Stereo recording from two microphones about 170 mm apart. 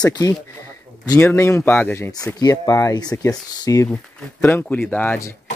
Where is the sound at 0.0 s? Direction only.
20° left (ahead or behind).